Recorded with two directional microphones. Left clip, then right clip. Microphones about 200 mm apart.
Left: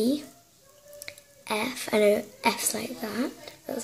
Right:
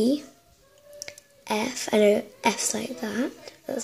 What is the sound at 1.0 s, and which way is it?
A woman's voice, 25° right (ahead or behind).